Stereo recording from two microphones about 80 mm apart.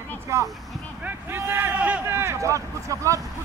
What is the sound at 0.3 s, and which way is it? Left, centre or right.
Speech, right.